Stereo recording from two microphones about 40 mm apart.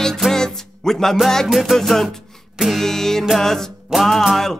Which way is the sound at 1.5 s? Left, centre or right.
Centre.